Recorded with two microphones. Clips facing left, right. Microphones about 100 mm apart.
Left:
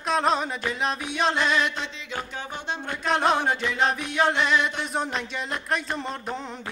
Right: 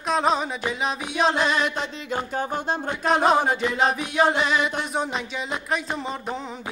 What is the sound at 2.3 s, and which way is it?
Speech, 40° right (ahead or behind).